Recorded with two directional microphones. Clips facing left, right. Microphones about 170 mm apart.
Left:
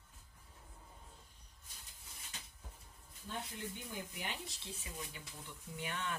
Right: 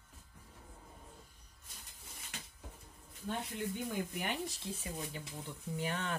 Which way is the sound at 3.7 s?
55° right (ahead or behind).